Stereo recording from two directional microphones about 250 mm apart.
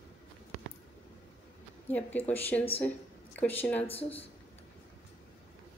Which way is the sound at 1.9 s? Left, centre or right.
Centre.